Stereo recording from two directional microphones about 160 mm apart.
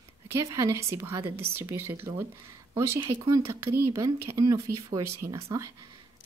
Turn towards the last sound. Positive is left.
turn(degrees=-20)  # may be behind; listen again after turning